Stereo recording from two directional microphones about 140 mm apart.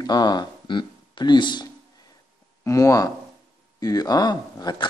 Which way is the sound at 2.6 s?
20° left (ahead or behind).